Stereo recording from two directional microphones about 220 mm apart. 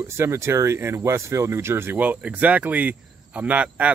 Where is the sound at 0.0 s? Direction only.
10° right (ahead or behind).